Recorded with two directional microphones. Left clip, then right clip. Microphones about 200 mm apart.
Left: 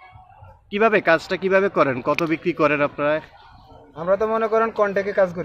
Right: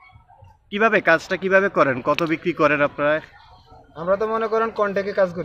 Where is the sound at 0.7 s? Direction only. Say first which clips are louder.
Even; 5° left (ahead or behind).